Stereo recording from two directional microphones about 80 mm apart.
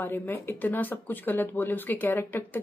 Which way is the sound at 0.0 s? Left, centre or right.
Left.